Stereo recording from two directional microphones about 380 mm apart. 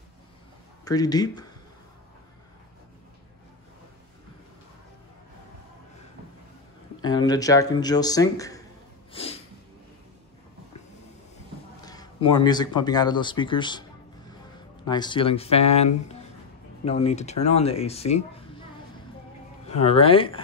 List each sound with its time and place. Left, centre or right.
0.8 s speech: centre
7.0 s speech: centre
9.1 s snort: centre
11.8 s speech: centre
14.9 s speech: centre
19.8 s speech: centre